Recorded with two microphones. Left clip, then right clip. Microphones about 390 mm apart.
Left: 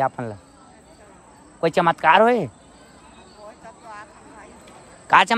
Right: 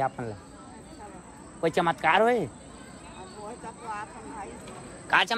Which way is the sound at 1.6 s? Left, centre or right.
Left.